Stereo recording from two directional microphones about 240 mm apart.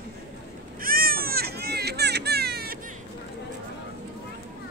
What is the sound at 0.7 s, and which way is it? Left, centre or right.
Baby cry, right.